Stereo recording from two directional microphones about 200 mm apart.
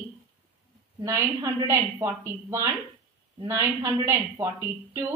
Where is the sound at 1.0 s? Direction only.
15° right (ahead or behind).